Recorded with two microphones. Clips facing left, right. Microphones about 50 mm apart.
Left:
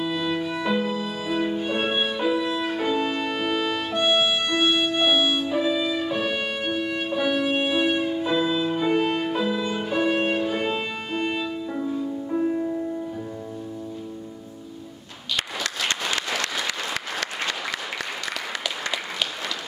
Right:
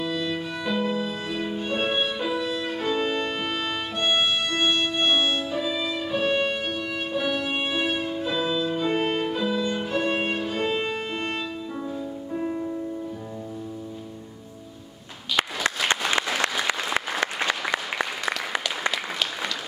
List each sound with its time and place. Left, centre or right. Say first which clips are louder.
0.0 s music: left 2 dB; centre
8.9 s violin: left 2 dB; centre
12.4 s music: left 5 dB; centre
16.3 s applause: right 2 dB; right